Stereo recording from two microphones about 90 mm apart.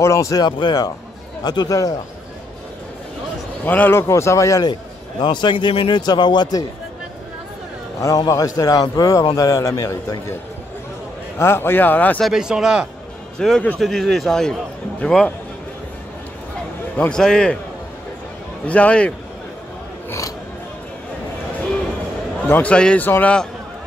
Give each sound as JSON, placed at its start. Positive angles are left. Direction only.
{"t": 0.0, "sound": "speech", "side_deg": 35}
{"t": 3.6, "sound": "speech", "side_deg": 20}
{"t": 4.1, "sound": "a man's voice", "side_deg": 35}
{"t": 5.2, "sound": "a man's voice", "side_deg": 60}
{"t": 8.2, "sound": "a man's voice", "side_deg": 40}
{"t": 11.3, "sound": "speech", "side_deg": 25}
{"t": 12.2, "sound": "speech", "side_deg": -5}
{"t": 13.4, "sound": "speech", "side_deg": 5}
{"t": 17.1, "sound": "speech", "side_deg": 10}
{"t": 18.7, "sound": "speech", "side_deg": 15}
{"t": 20.1, "sound": "a sound", "side_deg": 35}
{"t": 22.5, "sound": "speech", "side_deg": 15}
{"t": 23.0, "sound": "speech", "side_deg": 20}